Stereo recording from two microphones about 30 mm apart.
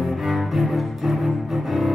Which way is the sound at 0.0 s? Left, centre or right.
Centre.